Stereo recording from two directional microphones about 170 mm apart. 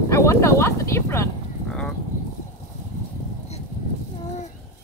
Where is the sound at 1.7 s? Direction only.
5° left (ahead or behind).